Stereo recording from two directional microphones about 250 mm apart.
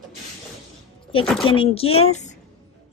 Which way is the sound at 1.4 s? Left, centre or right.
Left.